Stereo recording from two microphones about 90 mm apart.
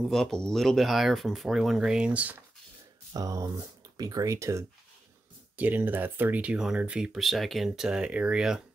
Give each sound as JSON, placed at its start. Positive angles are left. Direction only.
{"t": 0.0, "sound": "speech", "side_deg": 5}
{"t": 3.1, "sound": "speech", "side_deg": -40}
{"t": 5.6, "sound": "speech", "side_deg": -20}